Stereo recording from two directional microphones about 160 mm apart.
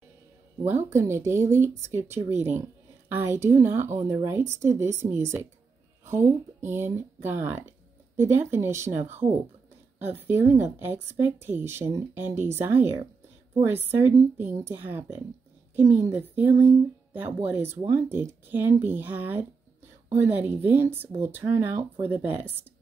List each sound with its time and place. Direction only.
0.7 s speech: 15° right (ahead or behind)